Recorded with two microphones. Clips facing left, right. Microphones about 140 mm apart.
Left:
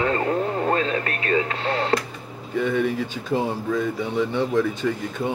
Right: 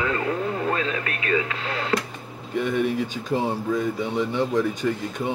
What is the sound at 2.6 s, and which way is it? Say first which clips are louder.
Speech: left 1 dB; 15° right (ahead or behind).